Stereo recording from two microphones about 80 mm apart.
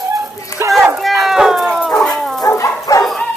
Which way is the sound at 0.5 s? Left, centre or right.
Left.